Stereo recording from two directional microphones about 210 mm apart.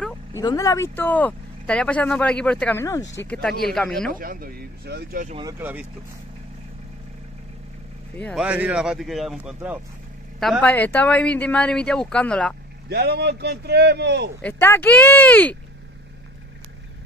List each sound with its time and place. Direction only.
0.3 s a woman's voice: 15° left (ahead or behind)
4.1 s speech: 45° right (ahead or behind)
5.4 s speech: 15° right (ahead or behind)
8.2 s a woman's voice: 5° left (ahead or behind)
8.5 s a woman's voice: 5° right (ahead or behind)
10.4 s a woman's voice: 5° left (ahead or behind)
12.9 s speech: 50° right (ahead or behind)
14.4 s speech: 10° left (ahead or behind)